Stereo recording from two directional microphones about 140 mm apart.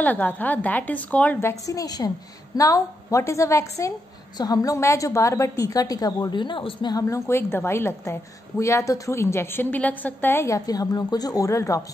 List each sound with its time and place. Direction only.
0.0 s a woman's voice: 10° left (ahead or behind)